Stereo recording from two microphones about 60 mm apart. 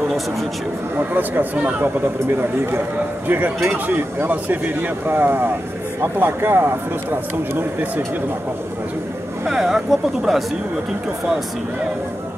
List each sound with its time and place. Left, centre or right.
0.9 s speech: right
3.3 s speech: right
9.5 s speech: centre